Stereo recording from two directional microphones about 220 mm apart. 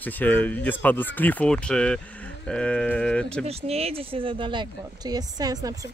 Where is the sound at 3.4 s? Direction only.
30° right (ahead or behind).